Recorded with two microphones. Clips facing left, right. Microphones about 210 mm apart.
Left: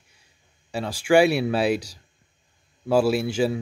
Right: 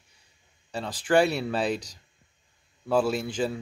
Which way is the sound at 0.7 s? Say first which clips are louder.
Left 5 dB; 10° left (ahead or behind).